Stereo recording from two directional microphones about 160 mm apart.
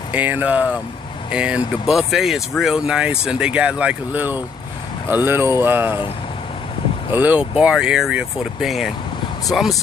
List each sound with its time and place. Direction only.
0.1 s speech: 10° right (ahead or behind)
7.1 s speech: 10° right (ahead or behind)